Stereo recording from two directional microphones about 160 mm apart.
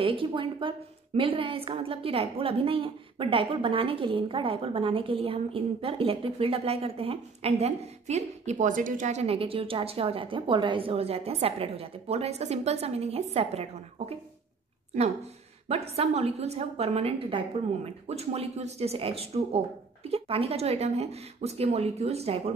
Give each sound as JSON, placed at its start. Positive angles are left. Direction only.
{"t": 0.0, "sound": "a woman's voice", "side_deg": -35}
{"t": 15.7, "sound": "a woman's voice", "side_deg": -40}